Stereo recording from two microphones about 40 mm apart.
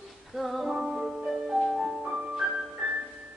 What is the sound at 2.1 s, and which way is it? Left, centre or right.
Music, centre.